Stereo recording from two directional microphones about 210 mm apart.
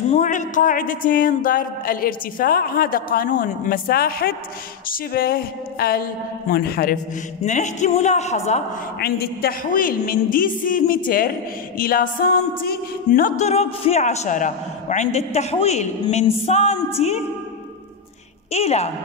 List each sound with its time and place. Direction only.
0.1 s speech: 35° left (ahead or behind)
7.4 s music: 35° left (ahead or behind)
9.0 s music: 50° left (ahead or behind)
11.1 s speech: 45° left (ahead or behind)
11.8 s music: 40° left (ahead or behind)
18.5 s music: 30° left (ahead or behind)